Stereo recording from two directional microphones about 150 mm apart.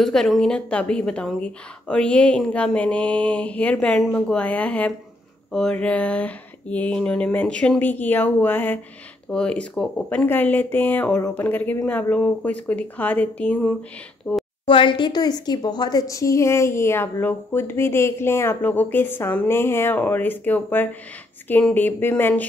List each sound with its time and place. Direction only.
0.0 s a woman's voice: centre (ahead or behind)
14.7 s a woman's voice: 35° left (ahead or behind); by 22.5 s 10° left (ahead or behind)